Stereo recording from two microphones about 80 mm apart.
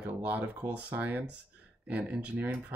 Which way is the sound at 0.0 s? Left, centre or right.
Centre.